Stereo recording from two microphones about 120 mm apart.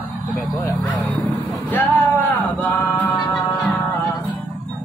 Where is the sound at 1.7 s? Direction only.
15° left (ahead or behind).